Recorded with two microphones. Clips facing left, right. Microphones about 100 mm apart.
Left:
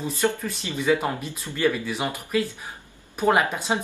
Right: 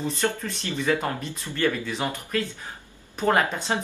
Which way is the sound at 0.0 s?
10° left (ahead or behind).